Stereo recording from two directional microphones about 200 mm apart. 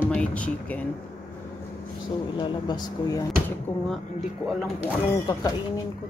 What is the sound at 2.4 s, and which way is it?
Speech, 20° left (ahead or behind).